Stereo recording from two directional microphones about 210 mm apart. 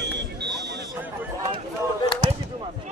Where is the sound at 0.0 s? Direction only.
55° right (ahead or behind).